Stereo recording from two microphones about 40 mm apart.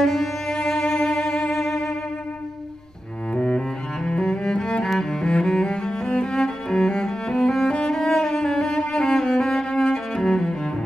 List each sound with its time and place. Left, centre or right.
0.0 s music: centre
3.3 s cello: centre